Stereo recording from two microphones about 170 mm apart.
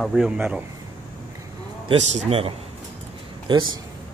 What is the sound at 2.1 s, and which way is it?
Speech, 40° right (ahead or behind).